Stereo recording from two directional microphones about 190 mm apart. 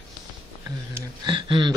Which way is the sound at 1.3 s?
25° right (ahead or behind).